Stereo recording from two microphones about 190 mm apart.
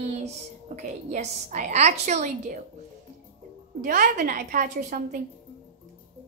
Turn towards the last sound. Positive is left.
turn(degrees=-50)  # may be behind; listen again after turning